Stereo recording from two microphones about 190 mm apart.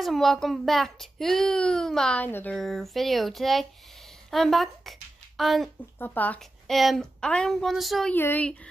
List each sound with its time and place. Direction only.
0.0 s a child's voice: centre (ahead or behind)